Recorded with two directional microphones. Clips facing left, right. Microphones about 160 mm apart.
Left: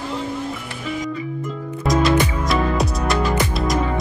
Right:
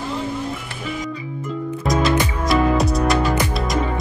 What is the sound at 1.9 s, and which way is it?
Music, centre (ahead or behind).